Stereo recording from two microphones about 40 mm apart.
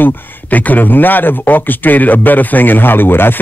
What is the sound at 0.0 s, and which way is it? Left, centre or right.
Speech, left.